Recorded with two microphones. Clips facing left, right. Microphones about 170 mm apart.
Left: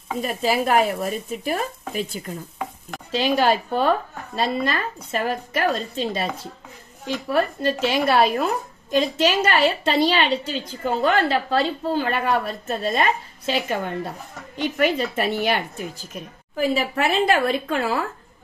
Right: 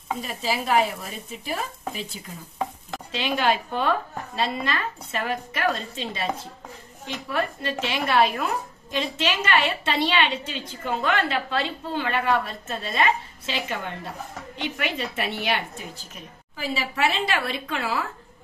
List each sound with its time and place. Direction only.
0.2 s speech: 50° left (ahead or behind)
3.1 s a woman's voice: 40° left (ahead or behind)